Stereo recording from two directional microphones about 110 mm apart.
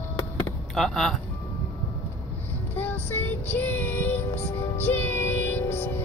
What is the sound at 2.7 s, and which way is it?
Child singing, 20° left (ahead or behind).